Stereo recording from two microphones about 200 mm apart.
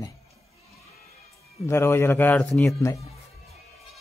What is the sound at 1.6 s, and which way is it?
A man's voice, 15° left (ahead or behind).